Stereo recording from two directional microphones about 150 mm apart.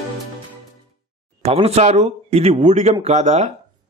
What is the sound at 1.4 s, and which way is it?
A man's voice, 45° right (ahead or behind).